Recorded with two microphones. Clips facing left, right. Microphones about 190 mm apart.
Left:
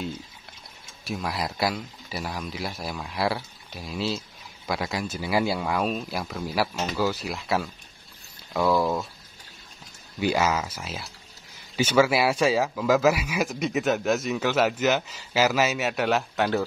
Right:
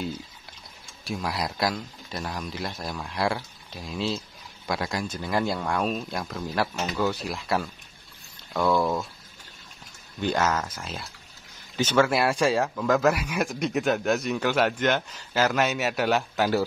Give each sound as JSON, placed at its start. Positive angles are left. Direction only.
{"t": 1.0, "sound": "speech", "side_deg": 0}
{"t": 10.2, "sound": "speech", "side_deg": 10}